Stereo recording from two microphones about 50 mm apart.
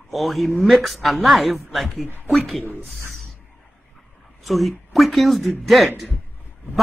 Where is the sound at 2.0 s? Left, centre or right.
Left.